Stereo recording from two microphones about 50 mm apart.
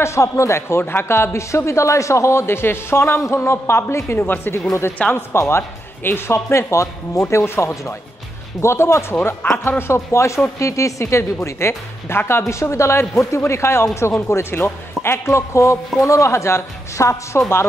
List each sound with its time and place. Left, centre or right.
0.0 s speech: left
4.5 s speech: left
5.1 s a man's voice: left
9.7 s speech: left
10.6 s speech: left
12.2 s a man's voice: left